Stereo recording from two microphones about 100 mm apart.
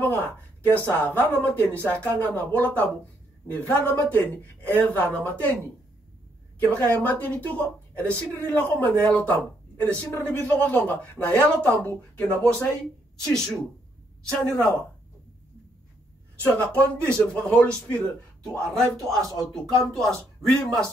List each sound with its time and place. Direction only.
0.0 s speech: 20° left (ahead or behind)
6.7 s a man's voice: 20° left (ahead or behind)
11.9 s a man's voice: 30° left (ahead or behind)
13.3 s speech: 5° left (ahead or behind)
16.7 s speech: 15° left (ahead or behind)